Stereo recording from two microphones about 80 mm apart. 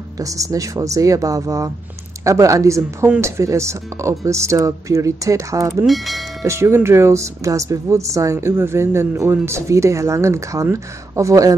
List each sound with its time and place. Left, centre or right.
0.2 s speech: right
5.9 s speech: centre
6.4 s speech: right